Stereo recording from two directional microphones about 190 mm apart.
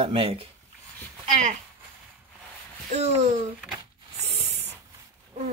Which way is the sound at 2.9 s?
35° right (ahead or behind).